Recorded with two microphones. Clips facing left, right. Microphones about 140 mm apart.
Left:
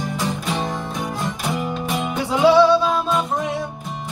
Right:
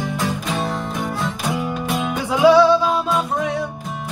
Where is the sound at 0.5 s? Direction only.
15° left (ahead or behind).